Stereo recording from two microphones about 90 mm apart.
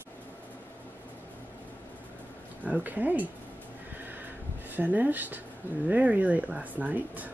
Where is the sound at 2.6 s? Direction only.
20° right (ahead or behind).